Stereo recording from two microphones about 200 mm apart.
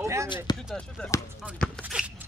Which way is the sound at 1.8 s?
5° right (ahead or behind).